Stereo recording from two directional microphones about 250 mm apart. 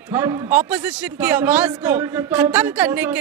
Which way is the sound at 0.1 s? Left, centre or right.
Centre.